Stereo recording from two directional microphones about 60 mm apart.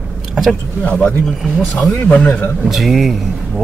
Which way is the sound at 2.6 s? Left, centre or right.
Centre.